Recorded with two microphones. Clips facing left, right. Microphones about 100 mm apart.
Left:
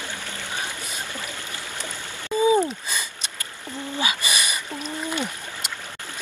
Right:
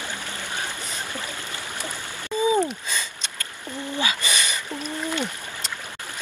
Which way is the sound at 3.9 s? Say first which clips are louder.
Even; 15° left (ahead or behind).